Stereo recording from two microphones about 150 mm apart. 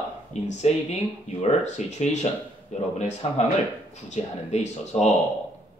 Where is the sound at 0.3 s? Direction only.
50° left (ahead or behind).